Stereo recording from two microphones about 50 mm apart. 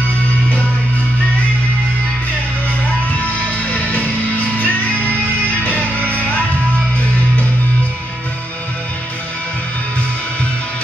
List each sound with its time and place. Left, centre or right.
3.7 s music: left